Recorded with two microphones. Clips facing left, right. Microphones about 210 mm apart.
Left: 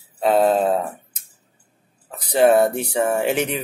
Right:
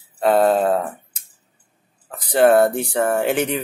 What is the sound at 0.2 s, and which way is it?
Music, 5° left (ahead or behind).